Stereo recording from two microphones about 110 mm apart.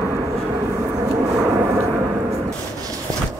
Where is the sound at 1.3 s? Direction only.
10° right (ahead or behind).